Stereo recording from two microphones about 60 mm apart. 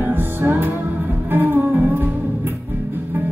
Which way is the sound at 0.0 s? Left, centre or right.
Right.